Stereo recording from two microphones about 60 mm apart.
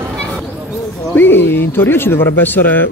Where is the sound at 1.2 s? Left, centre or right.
Left.